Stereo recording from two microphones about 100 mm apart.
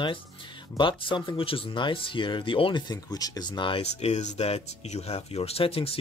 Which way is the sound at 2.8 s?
40° left (ahead or behind).